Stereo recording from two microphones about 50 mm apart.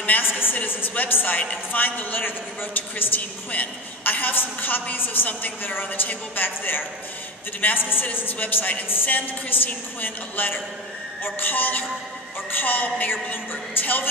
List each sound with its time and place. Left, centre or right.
0.0 s a woman's voice: left
9.1 s a woman's voice: left